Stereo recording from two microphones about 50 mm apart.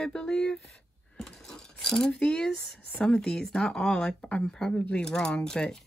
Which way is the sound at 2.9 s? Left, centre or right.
Centre.